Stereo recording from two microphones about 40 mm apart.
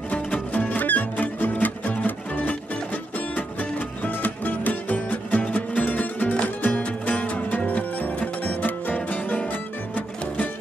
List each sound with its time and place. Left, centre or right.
0.1 s music: left
5.9 s music: left
8.6 s music: left